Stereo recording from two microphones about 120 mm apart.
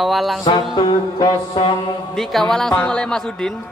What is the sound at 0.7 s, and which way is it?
Speech, 40° left (ahead or behind).